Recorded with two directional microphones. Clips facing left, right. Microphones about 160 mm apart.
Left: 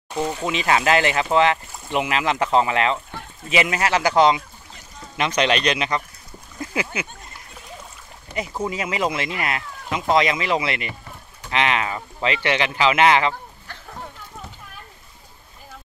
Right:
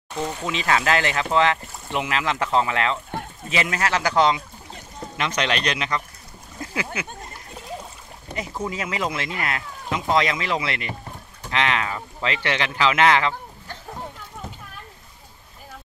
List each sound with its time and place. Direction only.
0.1 s speech: 10° left (ahead or behind)
8.4 s speech: 15° left (ahead or behind)